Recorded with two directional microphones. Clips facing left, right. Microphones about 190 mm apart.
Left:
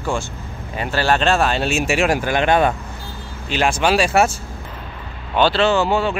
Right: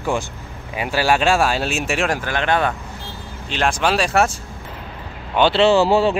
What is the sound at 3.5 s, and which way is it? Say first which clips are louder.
Speech: left 2 dB; 5° left (ahead or behind).